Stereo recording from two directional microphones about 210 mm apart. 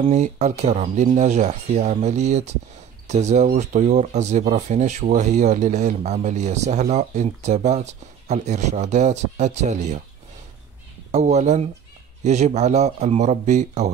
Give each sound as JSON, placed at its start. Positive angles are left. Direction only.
{"t": 0.1, "sound": "speech", "side_deg": -35}
{"t": 11.1, "sound": "speech", "side_deg": -35}